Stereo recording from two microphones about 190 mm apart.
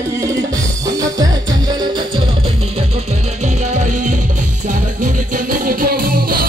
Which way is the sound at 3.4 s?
40° right (ahead or behind).